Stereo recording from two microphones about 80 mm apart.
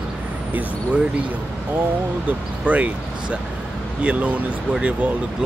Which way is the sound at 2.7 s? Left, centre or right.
Centre.